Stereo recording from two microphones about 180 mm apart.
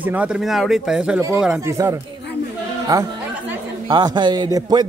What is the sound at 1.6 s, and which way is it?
A man's voice, 15° right (ahead or behind).